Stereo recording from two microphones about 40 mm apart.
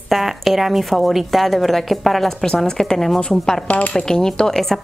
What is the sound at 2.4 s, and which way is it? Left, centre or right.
Speech, centre.